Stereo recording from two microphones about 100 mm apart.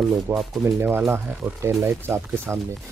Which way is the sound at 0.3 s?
20° right (ahead or behind).